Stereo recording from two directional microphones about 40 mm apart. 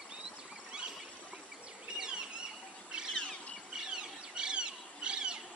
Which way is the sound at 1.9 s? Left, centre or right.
Right.